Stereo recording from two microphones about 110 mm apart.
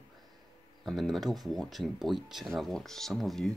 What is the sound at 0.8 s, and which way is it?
Speech, centre (ahead or behind).